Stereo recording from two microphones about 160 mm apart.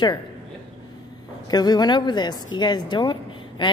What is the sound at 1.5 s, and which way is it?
A woman's voice, 25° left (ahead or behind).